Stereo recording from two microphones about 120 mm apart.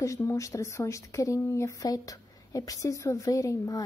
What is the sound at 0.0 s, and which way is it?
A woman's voice, 25° left (ahead or behind).